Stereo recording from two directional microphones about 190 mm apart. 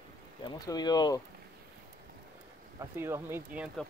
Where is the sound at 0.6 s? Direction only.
20° left (ahead or behind).